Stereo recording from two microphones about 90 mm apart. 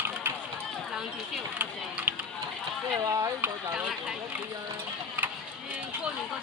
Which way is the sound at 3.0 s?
40° right (ahead or behind).